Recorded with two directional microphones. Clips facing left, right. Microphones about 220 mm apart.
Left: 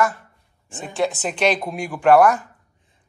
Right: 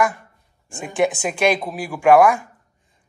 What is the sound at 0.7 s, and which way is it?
Speech, 15° right (ahead or behind).